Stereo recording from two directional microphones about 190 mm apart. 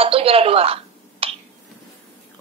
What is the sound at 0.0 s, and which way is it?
Telephone, 30° right (ahead or behind).